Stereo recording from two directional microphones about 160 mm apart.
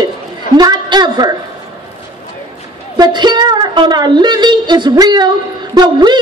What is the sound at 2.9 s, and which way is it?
A woman's voice, 25° right (ahead or behind).